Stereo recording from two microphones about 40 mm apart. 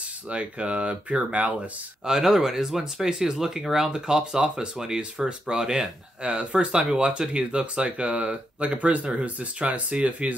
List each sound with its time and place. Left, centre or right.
0.3 s speech: right
2.0 s speech: centre; by 10.3 s right